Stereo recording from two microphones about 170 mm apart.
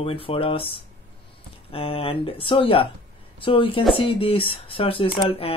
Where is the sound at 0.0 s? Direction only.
35° left (ahead or behind).